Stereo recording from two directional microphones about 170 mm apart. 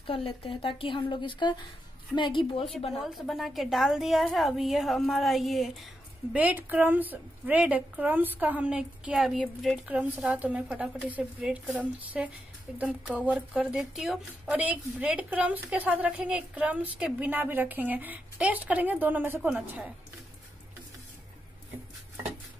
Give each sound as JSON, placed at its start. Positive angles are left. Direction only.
{"t": 0.0, "sound": "a woman's voice", "side_deg": 30}
{"t": 3.1, "sound": "a woman's voice", "side_deg": 0}